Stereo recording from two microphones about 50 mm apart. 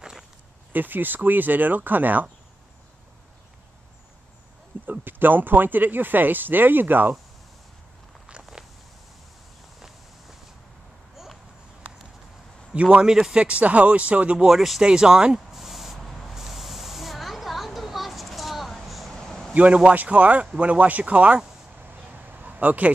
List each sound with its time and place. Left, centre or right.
0.7 s speech: right
4.8 s speech: right
8.3 s a sound: centre
9.8 s walk: centre
12.8 s a man's voice: centre
13.4 s speech: right
14.5 s a man's voice: centre
15.5 s spray: centre
19.5 s speech: right
21.8 s a sound: right